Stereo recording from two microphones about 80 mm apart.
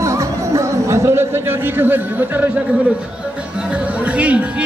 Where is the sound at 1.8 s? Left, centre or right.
Right.